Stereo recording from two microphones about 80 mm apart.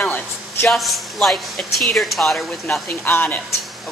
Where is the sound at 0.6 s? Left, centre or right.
Centre.